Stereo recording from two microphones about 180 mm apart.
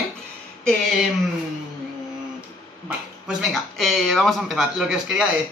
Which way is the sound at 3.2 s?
Centre (ahead or behind).